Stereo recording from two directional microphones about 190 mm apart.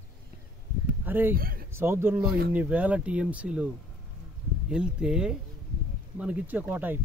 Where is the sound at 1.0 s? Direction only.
10° right (ahead or behind).